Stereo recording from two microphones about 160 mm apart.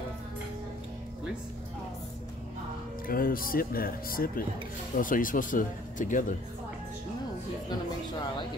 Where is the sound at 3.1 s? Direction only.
60° left (ahead or behind).